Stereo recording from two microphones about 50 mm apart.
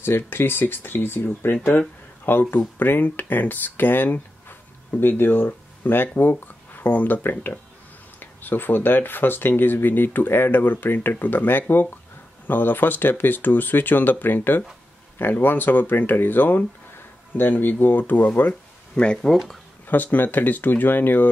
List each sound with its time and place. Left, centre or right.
0.0 s speech: left
19.3 s speech: centre
19.9 s speech: left